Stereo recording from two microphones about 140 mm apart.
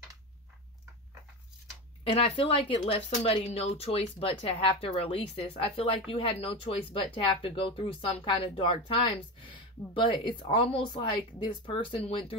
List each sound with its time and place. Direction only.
2.1 s speech: 40° left (ahead or behind)
2.8 s speech: 55° left (ahead or behind)